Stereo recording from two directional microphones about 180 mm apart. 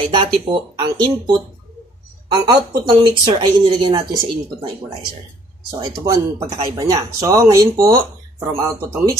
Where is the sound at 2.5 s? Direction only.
30° right (ahead or behind).